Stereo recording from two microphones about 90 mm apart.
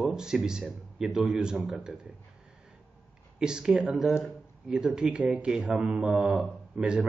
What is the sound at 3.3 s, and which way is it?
A man's voice, 10° right (ahead or behind).